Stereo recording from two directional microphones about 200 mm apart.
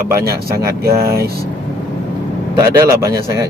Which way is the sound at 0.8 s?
50° right (ahead or behind).